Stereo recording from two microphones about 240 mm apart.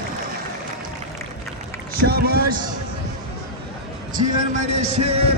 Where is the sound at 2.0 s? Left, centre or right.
Right.